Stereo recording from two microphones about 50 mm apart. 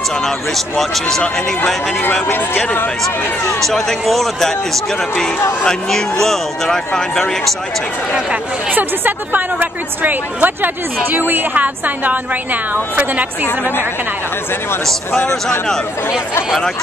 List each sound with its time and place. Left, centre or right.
0.2 s speech: centre
2.2 s a woman's voice: left
3.6 s speech: centre
8.7 s a woman's voice: right
11.5 s a woman's voice: right
13.5 s a woman's voice: left